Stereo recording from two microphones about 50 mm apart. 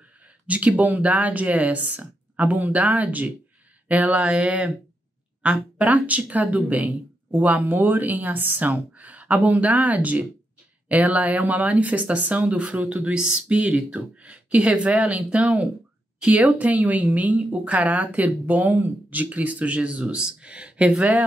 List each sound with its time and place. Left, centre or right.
0.5 s speech: right